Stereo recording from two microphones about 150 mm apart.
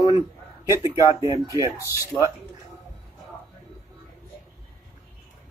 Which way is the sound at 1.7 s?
20° left (ahead or behind).